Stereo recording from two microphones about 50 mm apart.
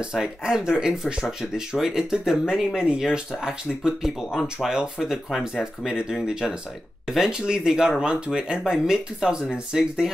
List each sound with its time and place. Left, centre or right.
0.1 s speech: centre